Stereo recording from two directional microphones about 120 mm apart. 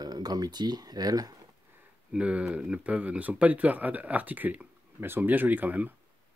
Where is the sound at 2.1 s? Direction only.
10° right (ahead or behind).